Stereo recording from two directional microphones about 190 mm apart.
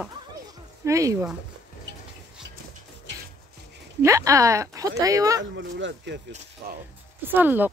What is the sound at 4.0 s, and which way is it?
Speech, 15° right (ahead or behind).